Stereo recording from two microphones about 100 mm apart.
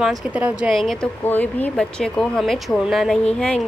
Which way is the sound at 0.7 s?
5° left (ahead or behind).